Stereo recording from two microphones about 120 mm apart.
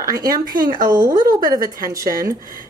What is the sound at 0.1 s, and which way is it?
A woman's voice, 30° right (ahead or behind).